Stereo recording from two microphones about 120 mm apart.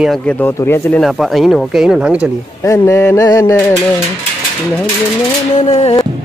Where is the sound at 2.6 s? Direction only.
25° left (ahead or behind).